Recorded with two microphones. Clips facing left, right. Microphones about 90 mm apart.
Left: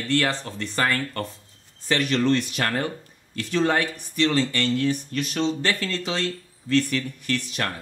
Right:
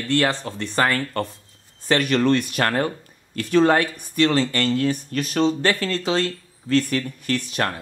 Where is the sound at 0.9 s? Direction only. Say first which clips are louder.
Right 3 dB; 60° right (ahead or behind).